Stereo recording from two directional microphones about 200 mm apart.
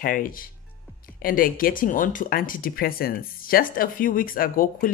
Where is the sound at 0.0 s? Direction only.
45° left (ahead or behind).